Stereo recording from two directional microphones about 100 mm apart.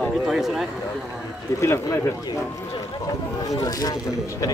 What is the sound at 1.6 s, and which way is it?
Speech, 25° left (ahead or behind).